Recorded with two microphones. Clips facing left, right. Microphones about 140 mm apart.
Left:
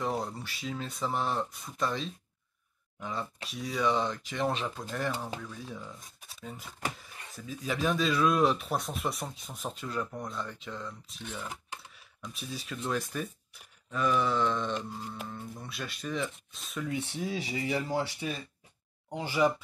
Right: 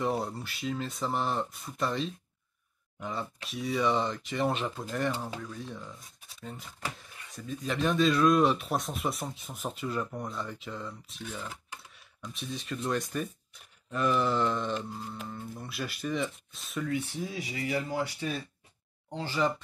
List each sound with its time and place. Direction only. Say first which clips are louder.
0.0 s speech: right 2 dB; centre (ahead or behind)
16.8 s speech: right 1 dB; 25° left (ahead or behind)
19.0 s speech: left 2 dB; 15° left (ahead or behind)